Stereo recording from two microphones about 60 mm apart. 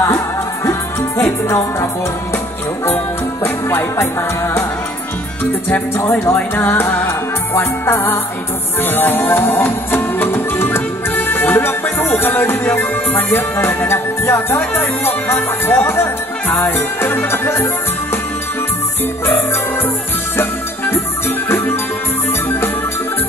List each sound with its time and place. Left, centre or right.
0.7 s music: left
3.4 s music: left
6.2 s music: left
20.3 s music: left